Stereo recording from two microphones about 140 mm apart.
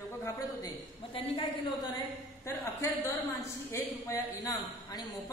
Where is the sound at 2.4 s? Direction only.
20° left (ahead or behind).